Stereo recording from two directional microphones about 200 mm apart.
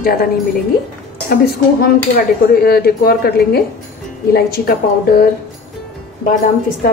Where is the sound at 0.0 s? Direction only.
45° left (ahead or behind).